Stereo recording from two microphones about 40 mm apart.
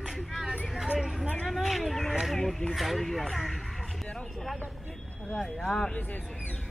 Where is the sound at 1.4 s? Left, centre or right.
Centre.